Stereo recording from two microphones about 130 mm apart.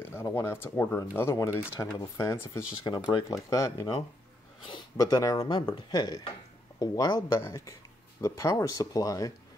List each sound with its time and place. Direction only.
0.1 s speech: 20° left (ahead or behind)
2.8 s speech: 35° left (ahead or behind)
5.4 s speech: 40° left (ahead or behind); by 9.3 s 25° left (ahead or behind)